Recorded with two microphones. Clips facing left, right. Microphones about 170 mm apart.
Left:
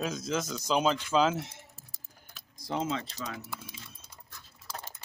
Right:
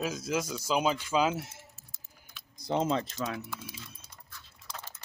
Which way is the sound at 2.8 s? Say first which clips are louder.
Right 4 dB; 35° right (ahead or behind).